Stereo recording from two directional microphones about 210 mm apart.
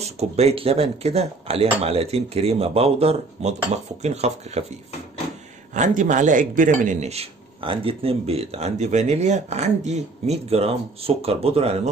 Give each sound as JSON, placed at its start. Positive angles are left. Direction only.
{"t": 0.0, "sound": "speech", "side_deg": -30}
{"t": 5.8, "sound": "speech", "side_deg": -35}